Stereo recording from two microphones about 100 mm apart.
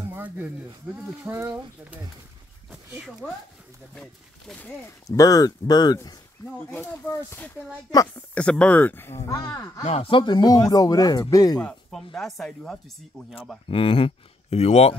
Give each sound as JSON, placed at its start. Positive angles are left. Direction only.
{"t": 0.1, "sound": "a sound", "side_deg": -20}
{"t": 0.8, "sound": "speech", "side_deg": -15}
{"t": 1.3, "sound": "speech", "side_deg": -30}
{"t": 2.7, "sound": "speech", "side_deg": -10}
{"t": 3.9, "sound": "speech", "side_deg": 5}
{"t": 5.0, "sound": "speech", "side_deg": 35}
{"t": 6.7, "sound": "speech", "side_deg": 25}
{"t": 8.4, "sound": "speech", "side_deg": 10}
{"t": 9.8, "sound": "speech", "side_deg": 75}
{"t": 11.9, "sound": "speech", "side_deg": 0}
{"t": 13.7, "sound": "speech", "side_deg": 65}